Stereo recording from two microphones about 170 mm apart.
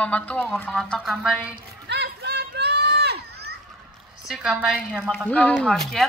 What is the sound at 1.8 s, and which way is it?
Children playing, 80° right.